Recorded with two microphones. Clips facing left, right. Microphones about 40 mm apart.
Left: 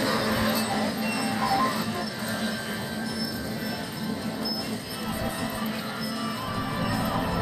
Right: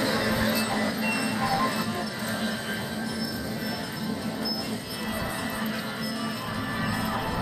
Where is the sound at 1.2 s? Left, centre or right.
Centre.